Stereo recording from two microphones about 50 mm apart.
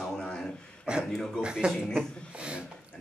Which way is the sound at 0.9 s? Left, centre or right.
Centre.